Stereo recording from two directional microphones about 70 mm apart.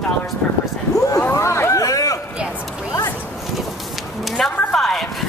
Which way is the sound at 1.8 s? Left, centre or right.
Left.